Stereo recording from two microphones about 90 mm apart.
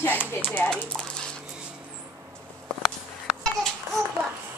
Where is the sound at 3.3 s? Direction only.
5° left (ahead or behind).